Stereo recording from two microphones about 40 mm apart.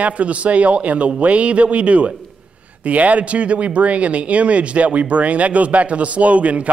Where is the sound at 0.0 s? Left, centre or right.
Right.